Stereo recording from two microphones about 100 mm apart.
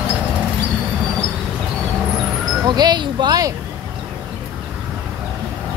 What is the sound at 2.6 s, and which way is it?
Wind chime, 45° right (ahead or behind).